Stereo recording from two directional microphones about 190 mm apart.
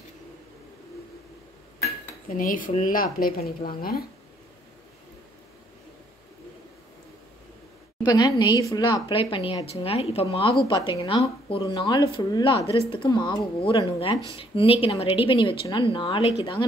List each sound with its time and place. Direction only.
2.2 s speech: 45° left (ahead or behind)
8.0 s speech: 20° left (ahead or behind)